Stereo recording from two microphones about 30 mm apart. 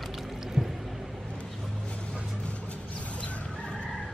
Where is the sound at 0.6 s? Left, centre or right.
Centre.